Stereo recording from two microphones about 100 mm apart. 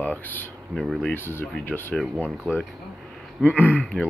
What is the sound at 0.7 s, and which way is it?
Speech, 5° left (ahead or behind).